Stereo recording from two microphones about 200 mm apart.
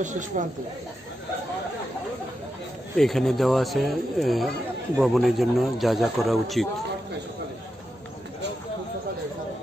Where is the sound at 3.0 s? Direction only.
Centre (ahead or behind).